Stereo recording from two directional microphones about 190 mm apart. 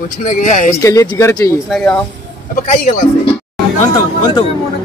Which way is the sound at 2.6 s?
45° left (ahead or behind).